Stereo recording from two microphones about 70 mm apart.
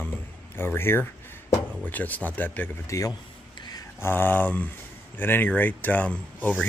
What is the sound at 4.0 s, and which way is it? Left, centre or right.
Speech, left.